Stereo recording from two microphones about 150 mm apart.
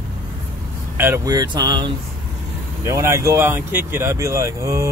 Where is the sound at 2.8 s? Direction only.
20° right (ahead or behind).